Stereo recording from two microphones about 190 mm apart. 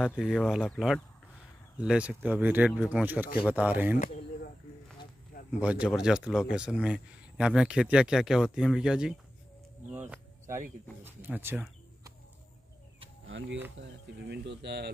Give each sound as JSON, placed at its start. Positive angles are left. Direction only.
{"t": 0.1, "sound": "speech", "side_deg": -5}
{"t": 5.6, "sound": "speech", "side_deg": -5}
{"t": 13.3, "sound": "a sound", "side_deg": -75}
{"t": 13.8, "sound": "speech", "side_deg": -65}